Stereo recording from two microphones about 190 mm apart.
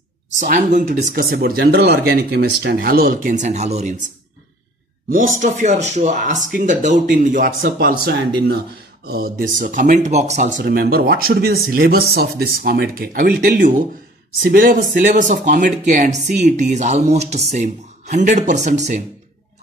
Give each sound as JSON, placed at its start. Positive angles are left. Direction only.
{"t": 0.4, "sound": "speech", "side_deg": -40}
{"t": 5.1, "sound": "speech", "side_deg": -45}
{"t": 10.6, "sound": "speech", "side_deg": -55}